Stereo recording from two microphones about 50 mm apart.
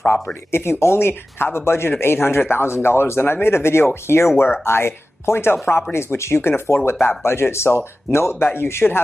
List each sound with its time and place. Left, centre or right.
0.5 s a man's voice: left